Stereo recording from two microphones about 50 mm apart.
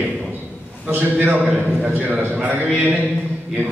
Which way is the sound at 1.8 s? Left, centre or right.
Right.